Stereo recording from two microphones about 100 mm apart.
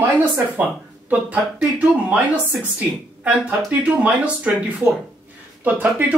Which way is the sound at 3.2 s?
15° right (ahead or behind).